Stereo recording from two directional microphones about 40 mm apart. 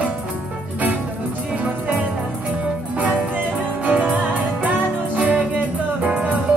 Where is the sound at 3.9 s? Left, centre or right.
Right.